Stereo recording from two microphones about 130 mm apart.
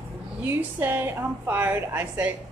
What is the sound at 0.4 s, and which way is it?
A woman's voice, 15° right (ahead or behind).